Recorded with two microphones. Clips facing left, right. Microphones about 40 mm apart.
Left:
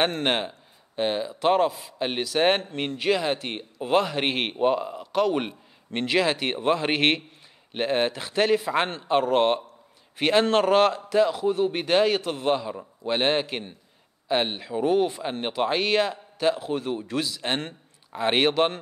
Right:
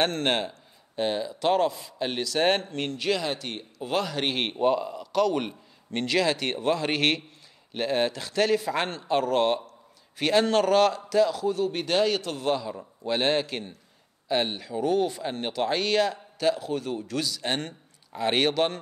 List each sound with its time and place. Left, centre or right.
0.0 s a man's voice: centre